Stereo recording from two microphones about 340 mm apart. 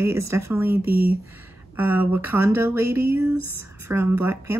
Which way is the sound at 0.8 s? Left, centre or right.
Right.